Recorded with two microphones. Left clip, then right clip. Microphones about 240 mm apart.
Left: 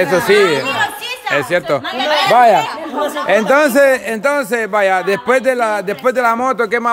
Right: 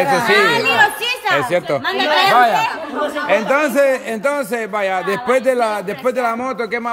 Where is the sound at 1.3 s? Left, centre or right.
Centre.